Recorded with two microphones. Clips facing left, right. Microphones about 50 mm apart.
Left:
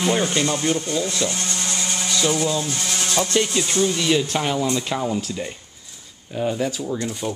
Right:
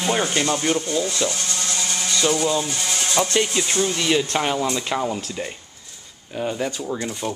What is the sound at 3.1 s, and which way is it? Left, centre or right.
Speech, centre.